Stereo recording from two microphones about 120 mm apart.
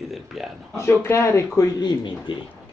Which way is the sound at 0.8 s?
25° left (ahead or behind).